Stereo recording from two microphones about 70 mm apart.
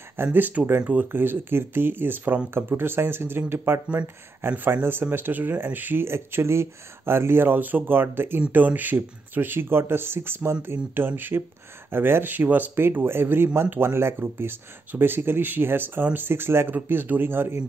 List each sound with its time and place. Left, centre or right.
0.2 s speech: right